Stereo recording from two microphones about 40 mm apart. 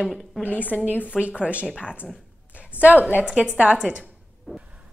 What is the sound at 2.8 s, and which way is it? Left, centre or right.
Speech, right.